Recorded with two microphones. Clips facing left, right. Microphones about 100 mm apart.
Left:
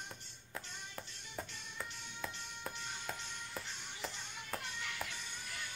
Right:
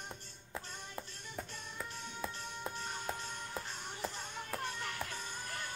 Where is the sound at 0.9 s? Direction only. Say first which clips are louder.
Right 3 dB; 5° right (ahead or behind).